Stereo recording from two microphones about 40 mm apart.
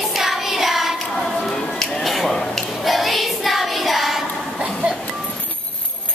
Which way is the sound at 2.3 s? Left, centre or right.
Centre.